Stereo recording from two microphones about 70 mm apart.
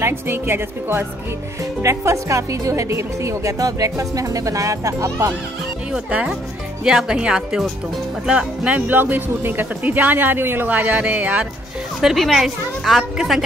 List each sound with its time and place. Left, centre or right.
0.0 s speech: right
1.6 s speech: right
5.9 s speech: centre
12.0 s a woman's voice: centre